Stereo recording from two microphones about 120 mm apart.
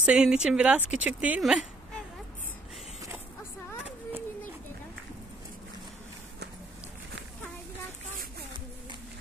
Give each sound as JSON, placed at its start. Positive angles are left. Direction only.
{"t": 0.0, "sound": "speech", "side_deg": -5}